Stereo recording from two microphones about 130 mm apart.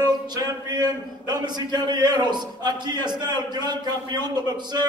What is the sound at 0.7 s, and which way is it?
A man's voice, 30° right (ahead or behind).